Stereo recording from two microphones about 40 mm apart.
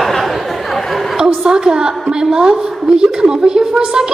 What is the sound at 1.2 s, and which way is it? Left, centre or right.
A woman's voice, centre.